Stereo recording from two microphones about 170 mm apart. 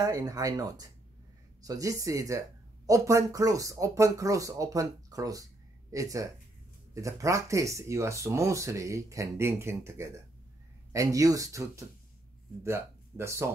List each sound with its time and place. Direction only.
0.0 s speech: 20° right (ahead or behind)